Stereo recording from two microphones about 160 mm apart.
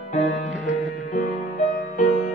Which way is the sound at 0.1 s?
50° left (ahead or behind).